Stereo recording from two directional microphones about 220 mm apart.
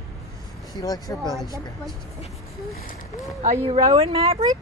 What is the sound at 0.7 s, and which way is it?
Speech, 15° left (ahead or behind).